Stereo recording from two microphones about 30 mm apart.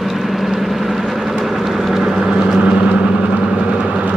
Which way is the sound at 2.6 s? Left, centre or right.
Right.